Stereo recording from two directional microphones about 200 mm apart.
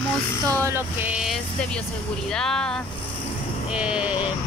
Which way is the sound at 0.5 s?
15° right (ahead or behind).